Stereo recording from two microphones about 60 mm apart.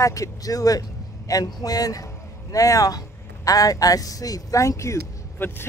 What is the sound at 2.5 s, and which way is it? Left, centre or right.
A woman's voice, left.